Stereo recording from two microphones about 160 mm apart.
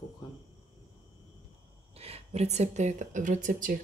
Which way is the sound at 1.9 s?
40° right (ahead or behind).